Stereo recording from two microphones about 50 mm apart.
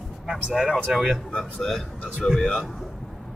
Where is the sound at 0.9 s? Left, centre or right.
Right.